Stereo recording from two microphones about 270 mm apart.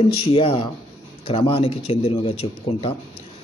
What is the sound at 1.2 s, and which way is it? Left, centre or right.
Speech, centre.